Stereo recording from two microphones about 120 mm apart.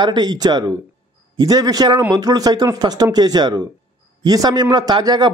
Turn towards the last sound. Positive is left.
turn(degrees=-35)  # may be behind; listen again after turning